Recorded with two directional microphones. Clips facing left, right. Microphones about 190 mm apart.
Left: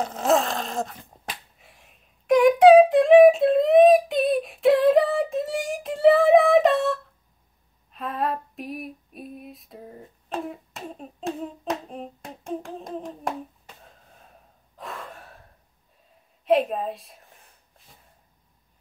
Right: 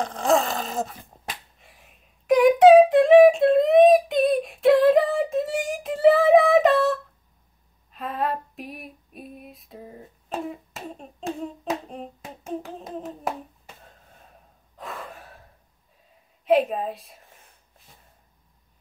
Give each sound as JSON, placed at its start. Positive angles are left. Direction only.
{"t": 0.0, "sound": "a sound", "side_deg": 5}
{"t": 7.9, "sound": "female singing", "side_deg": 0}
{"t": 13.7, "sound": "gasp", "side_deg": 0}
{"t": 16.4, "sound": "a woman's voice", "side_deg": 0}